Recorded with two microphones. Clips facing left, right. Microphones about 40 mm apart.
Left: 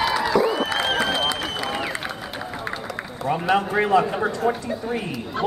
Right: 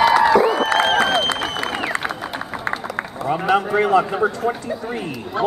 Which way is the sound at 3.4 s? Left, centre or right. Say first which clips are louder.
Right 3 dB; centre.